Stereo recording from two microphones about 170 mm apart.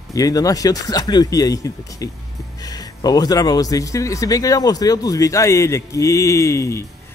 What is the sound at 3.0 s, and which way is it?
Speech, 20° left (ahead or behind).